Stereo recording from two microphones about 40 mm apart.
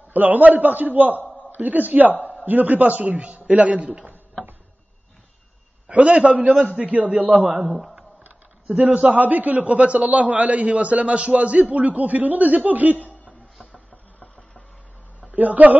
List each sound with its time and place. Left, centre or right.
0.1 s a man's voice: right
5.9 s speech: right
7.6 s speech: centre
8.2 s speech: right
15.3 s a man's voice: right